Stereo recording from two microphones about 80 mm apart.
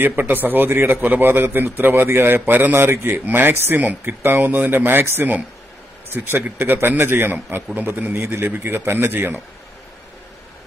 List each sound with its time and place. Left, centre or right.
0.0 s a man's voice: right
3.3 s a man's voice: right